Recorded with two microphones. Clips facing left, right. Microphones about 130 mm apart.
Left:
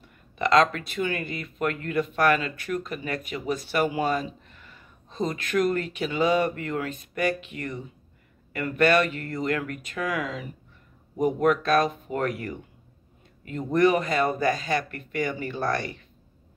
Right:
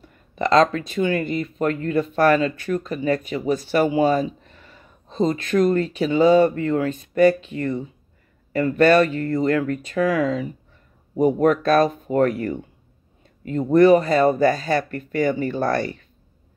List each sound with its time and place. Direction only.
0.4 s speech: 30° right (ahead or behind)